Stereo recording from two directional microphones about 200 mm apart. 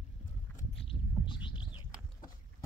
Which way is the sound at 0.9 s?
25° left (ahead or behind).